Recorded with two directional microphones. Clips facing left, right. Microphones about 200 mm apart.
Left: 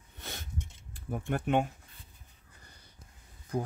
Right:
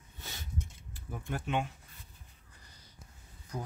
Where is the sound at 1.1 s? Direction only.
55° left (ahead or behind).